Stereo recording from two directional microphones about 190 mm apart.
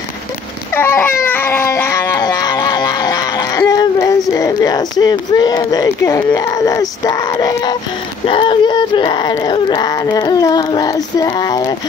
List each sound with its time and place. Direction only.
0.7 s baby cry: 10° left (ahead or behind)
4.3 s speech: 15° left (ahead or behind)